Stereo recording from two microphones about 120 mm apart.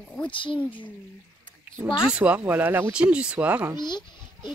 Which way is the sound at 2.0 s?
10° right (ahead or behind).